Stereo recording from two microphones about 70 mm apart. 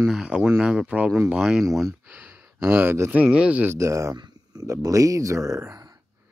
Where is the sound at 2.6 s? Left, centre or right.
Right.